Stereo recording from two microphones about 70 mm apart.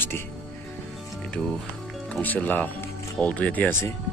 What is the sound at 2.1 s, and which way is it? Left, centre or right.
A man's voice, left.